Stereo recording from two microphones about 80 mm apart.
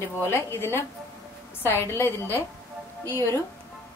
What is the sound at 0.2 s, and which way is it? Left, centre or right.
A woman's voice, left.